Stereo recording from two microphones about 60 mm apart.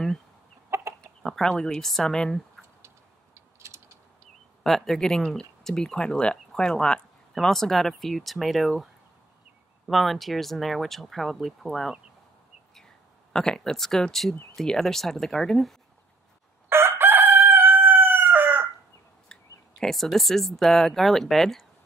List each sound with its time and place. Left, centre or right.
0.7 s chicken: right
1.0 s speech: centre
3.3 s mechanisms: right
4.6 s speech: centre
9.8 s speech: centre
13.3 s speech: centre
16.6 s crowing: right
19.8 s speech: centre